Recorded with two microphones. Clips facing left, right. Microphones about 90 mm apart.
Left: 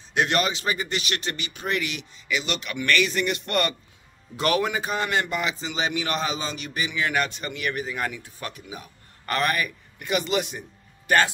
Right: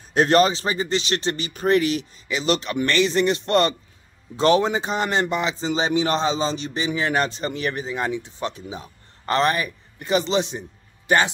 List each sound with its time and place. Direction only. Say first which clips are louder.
0.1 s a man's voice: right 7 dB; 35° right (ahead or behind)